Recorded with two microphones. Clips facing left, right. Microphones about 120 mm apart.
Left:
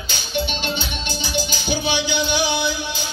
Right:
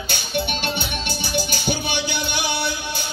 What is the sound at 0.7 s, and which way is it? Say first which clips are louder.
Music: even; 55° right (ahead or behind).